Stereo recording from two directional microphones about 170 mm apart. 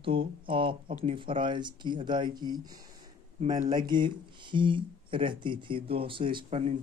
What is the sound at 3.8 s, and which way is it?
Speech, 25° right (ahead or behind).